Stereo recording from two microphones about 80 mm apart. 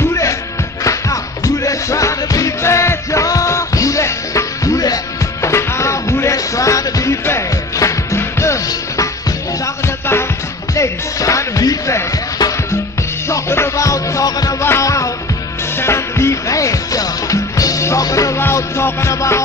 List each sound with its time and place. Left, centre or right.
0.1 s music: left
5.5 s music: left
10.7 s music: left
14.6 s music: left
18.4 s music: left